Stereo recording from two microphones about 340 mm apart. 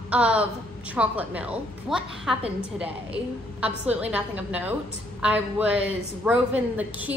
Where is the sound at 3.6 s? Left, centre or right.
Centre.